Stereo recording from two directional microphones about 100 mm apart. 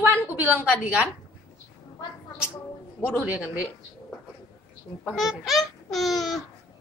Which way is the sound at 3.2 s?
15° right (ahead or behind).